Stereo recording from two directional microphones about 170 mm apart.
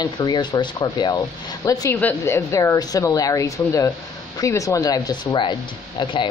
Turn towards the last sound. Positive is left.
turn(degrees=30)  # may be behind; listen again after turning